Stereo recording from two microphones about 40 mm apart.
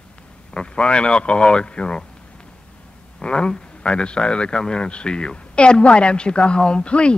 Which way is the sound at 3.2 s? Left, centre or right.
Left.